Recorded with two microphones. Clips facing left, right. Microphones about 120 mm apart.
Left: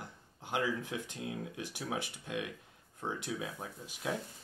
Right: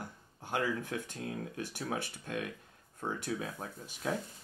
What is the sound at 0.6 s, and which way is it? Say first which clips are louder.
Speech: right 1 dB; 50° right (ahead or behind).